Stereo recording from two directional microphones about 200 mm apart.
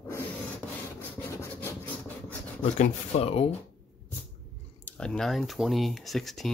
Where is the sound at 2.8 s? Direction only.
30° left (ahead or behind).